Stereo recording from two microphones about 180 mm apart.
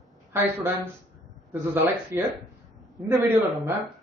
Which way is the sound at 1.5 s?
15° right (ahead or behind).